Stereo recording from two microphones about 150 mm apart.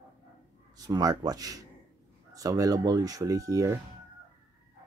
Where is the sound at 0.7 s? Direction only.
25° right (ahead or behind).